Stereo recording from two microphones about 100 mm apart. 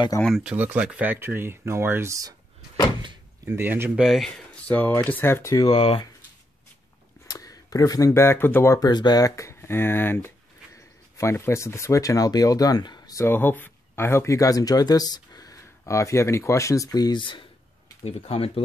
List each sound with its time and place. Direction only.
0.3 s speech: 10° right (ahead or behind); by 2.3 s 30° right (ahead or behind)
3.4 s speech: 20° right (ahead or behind)
3.9 s speech: 5° right (ahead or behind)
4.3 s speech: 15° left (ahead or behind)
7.2 s speech: 35° left (ahead or behind)
8.7 s speech: 45° left (ahead or behind)
13.2 s speech: 20° left (ahead or behind); by 17.5 s 55° left (ahead or behind)
18.0 s speech: 85° left